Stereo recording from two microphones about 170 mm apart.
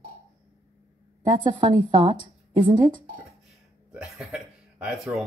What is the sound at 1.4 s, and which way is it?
Speech, 25° right (ahead or behind).